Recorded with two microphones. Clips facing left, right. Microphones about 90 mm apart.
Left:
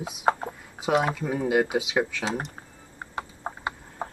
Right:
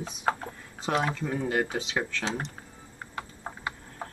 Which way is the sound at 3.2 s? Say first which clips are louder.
Left 4 dB; 20° left (ahead or behind).